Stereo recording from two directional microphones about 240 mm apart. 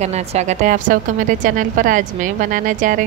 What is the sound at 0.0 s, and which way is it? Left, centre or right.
A woman's voice, right.